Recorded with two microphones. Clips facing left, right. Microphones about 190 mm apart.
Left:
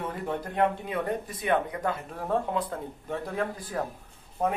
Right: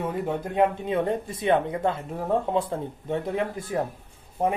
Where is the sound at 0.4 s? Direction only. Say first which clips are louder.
Right 3 dB; 25° right (ahead or behind).